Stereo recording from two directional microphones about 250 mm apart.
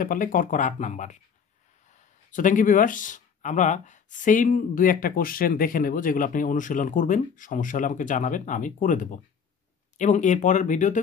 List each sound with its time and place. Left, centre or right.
0.0 s speech: left
2.3 s speech: left